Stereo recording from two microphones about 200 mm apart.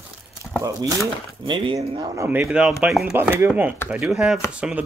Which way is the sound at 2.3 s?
5° right (ahead or behind).